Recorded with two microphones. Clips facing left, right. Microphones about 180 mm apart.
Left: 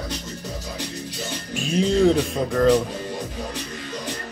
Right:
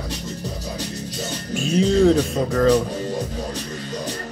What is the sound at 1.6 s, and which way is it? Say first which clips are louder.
Speech: right 2 dB; centre (ahead or behind).